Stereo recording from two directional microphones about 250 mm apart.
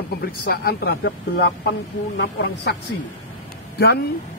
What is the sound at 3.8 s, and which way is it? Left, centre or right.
Speech, left.